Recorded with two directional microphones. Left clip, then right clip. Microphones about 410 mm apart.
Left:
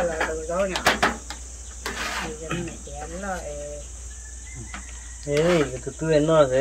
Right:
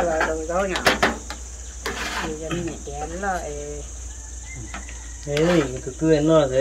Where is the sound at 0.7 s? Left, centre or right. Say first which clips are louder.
Right 2 dB; centre.